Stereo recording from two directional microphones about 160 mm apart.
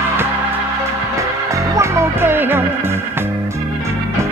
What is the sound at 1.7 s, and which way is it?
Music, 15° right (ahead or behind).